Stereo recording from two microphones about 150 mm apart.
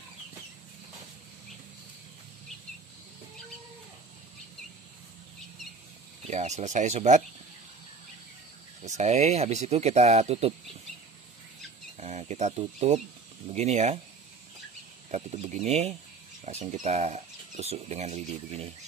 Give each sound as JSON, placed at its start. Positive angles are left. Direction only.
{"t": 6.2, "sound": "speech", "side_deg": -50}
{"t": 8.8, "sound": "speech", "side_deg": -50}
{"t": 12.0, "sound": "speech", "side_deg": -50}
{"t": 15.0, "sound": "speech", "side_deg": -50}